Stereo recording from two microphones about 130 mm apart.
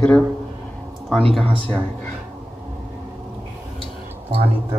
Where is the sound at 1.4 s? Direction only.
45° right (ahead or behind).